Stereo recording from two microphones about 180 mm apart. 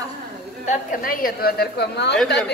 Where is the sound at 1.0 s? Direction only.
55° left (ahead or behind).